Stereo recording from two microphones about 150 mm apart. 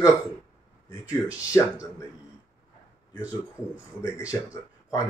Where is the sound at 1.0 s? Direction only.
10° right (ahead or behind).